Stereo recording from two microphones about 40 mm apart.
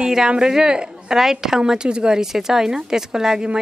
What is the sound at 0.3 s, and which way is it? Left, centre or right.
Speech, centre.